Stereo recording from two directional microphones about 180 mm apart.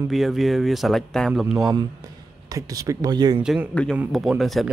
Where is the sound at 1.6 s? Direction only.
20° right (ahead or behind).